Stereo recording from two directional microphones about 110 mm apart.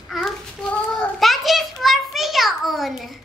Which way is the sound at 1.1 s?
Centre (ahead or behind).